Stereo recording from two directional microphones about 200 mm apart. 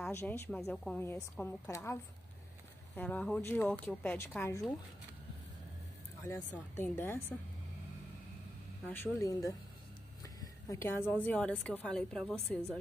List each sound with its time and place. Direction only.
0.0 s a woman's voice: 10° left (ahead or behind)
3.0 s a woman's voice: 10° left (ahead or behind)
6.8 s a woman's voice: 10° left (ahead or behind)
8.8 s a woman's voice: 10° left (ahead or behind)